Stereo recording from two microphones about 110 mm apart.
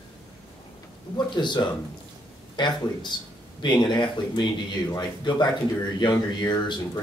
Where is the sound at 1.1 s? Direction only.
45° left (ahead or behind).